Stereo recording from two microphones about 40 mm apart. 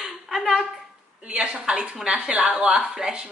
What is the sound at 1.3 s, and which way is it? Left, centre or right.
A woman's voice, right.